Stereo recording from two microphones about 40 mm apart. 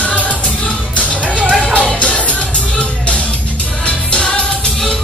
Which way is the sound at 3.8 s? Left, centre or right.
Left.